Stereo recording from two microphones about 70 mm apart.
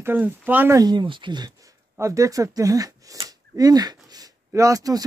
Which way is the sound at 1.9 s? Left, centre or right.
Right.